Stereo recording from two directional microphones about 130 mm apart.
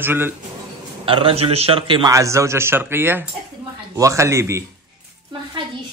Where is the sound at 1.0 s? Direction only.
45° right (ahead or behind).